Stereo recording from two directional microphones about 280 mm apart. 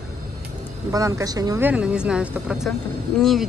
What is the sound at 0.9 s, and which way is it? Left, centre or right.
Speech, centre.